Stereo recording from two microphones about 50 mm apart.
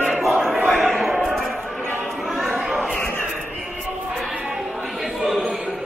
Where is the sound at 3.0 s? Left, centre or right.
Left.